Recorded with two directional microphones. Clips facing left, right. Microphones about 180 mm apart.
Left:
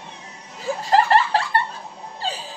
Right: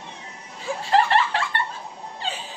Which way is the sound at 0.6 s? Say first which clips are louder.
Left 2 dB; 40° left (ahead or behind).